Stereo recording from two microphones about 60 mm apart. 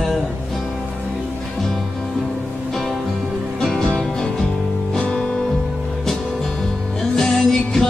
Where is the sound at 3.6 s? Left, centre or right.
Centre.